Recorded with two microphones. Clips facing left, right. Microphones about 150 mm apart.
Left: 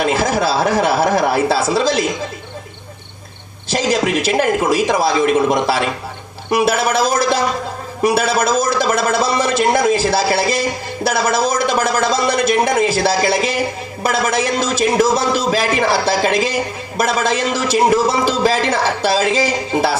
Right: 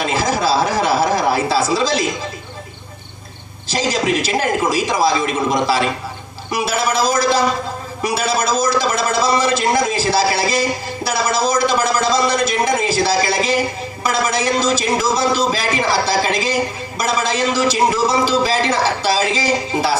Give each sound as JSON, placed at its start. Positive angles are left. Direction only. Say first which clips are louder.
{"t": 0.0, "sound": "a woman's voice", "louder": "left 2 dB", "side_deg": 50}
{"t": 3.6, "sound": "a man's voice", "louder": "left 2 dB", "side_deg": 55}